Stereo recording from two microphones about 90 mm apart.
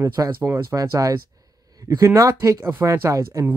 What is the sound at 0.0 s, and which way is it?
Speech, 35° right (ahead or behind).